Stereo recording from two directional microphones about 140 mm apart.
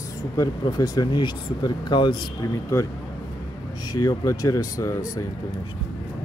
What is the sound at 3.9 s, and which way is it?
Speech, 25° left (ahead or behind).